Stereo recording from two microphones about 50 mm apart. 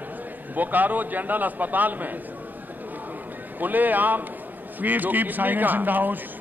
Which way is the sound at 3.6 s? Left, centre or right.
Right.